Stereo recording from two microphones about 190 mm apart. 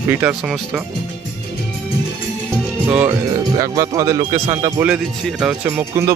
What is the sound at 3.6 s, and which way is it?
Speech, 15° right (ahead or behind).